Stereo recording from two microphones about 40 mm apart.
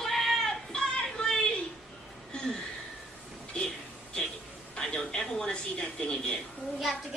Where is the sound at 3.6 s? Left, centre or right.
Left.